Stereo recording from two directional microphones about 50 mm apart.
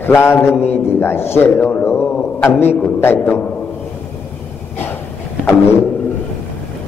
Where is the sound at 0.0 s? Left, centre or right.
Left.